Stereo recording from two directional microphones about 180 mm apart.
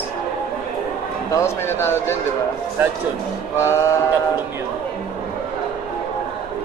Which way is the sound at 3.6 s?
15° left (ahead or behind).